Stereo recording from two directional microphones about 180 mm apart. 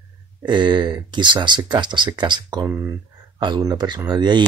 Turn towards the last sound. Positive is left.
turn(degrees=-25)  # may be behind; listen again after turning